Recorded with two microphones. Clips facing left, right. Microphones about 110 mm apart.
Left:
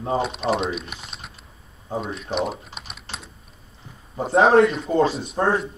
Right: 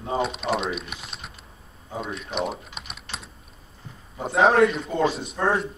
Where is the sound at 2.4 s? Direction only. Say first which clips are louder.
Left 2 dB; centre (ahead or behind).